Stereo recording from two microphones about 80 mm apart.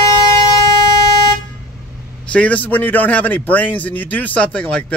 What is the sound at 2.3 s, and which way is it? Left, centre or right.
A man's voice, centre.